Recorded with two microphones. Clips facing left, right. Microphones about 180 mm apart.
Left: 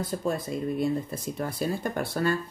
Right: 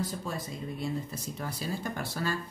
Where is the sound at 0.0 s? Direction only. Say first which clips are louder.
Left 6 dB; 55° left (ahead or behind).